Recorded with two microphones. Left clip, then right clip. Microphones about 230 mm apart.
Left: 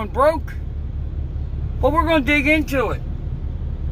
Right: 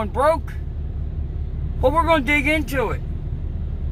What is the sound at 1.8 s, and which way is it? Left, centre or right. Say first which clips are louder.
Speech: even; centre.